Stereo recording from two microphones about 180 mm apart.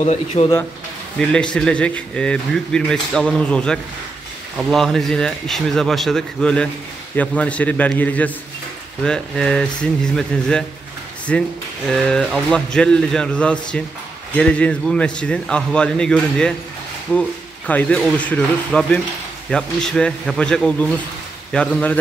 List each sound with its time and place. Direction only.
0.0 s speech: 35° left (ahead or behind)
1.3 s a man's voice: 5° left (ahead or behind)